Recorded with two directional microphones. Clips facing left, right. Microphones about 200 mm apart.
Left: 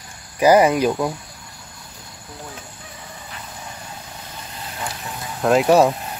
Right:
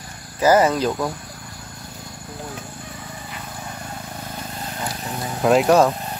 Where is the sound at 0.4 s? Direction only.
15° left (ahead or behind).